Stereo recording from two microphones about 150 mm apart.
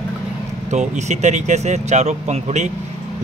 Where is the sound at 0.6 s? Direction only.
50° right (ahead or behind).